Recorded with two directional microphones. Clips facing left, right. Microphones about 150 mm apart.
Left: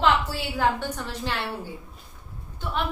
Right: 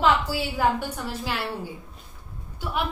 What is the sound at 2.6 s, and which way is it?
Speech, 10° right (ahead or behind).